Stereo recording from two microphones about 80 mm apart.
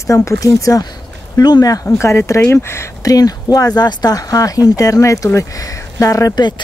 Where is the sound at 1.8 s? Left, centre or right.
Left.